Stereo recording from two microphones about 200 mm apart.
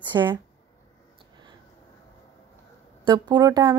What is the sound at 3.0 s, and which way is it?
Speech, 20° right (ahead or behind).